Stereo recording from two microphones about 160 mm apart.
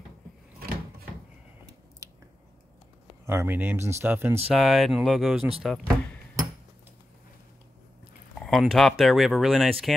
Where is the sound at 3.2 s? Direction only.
15° right (ahead or behind).